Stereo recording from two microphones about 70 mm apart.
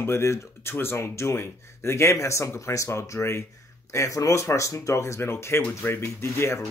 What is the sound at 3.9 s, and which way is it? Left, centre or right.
Speech, left.